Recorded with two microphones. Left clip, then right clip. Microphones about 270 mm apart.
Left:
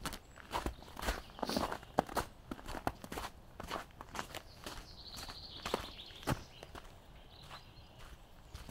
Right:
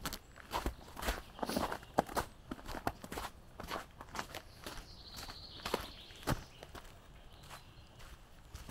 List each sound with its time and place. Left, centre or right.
0.0 s walk: centre